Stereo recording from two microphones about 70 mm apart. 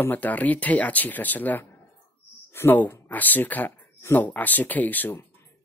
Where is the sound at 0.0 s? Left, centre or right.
Left.